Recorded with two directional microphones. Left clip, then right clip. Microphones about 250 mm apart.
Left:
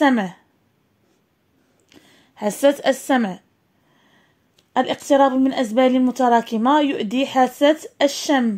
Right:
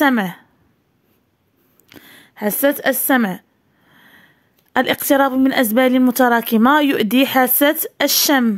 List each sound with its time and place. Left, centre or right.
0.0 s a woman's voice: right
1.9 s a sound: right
3.1 s a woman's voice: right
3.9 s sniff: right
4.7 s a woman's voice: right